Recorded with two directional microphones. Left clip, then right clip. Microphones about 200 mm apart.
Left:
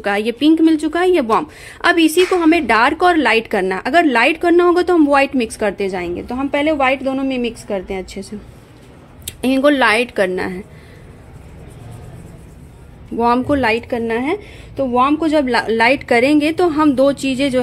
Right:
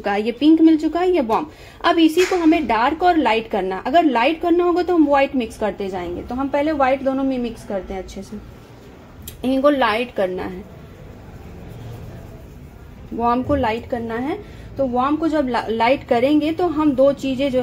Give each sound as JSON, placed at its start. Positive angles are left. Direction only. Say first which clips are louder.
{"t": 0.0, "sound": "a woman's voice", "louder": "left 2 dB", "side_deg": 15}
{"t": 13.2, "sound": "a woman's voice", "louder": "left 4 dB", "side_deg": 30}